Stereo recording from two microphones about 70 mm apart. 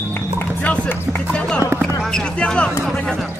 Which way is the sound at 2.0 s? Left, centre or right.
Centre.